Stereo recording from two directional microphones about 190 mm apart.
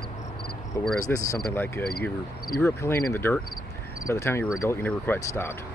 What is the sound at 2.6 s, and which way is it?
Speech, 15° left (ahead or behind).